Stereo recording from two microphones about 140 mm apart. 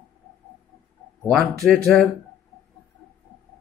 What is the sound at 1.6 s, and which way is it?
Speech, centre (ahead or behind).